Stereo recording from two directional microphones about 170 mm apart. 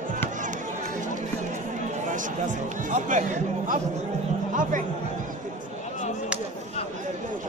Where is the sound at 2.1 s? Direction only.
50° right (ahead or behind).